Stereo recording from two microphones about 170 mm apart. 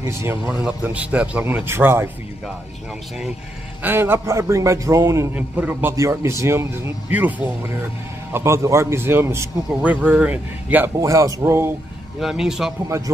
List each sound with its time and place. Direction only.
0.0 s a man's voice: 15° right (ahead or behind)
3.8 s a man's voice: 15° right (ahead or behind)
12.2 s a man's voice: 5° right (ahead or behind)
12.8 s a man's voice: 15° right (ahead or behind)